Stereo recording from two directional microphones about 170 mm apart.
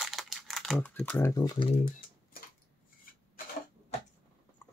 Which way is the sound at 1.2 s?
20° left (ahead or behind).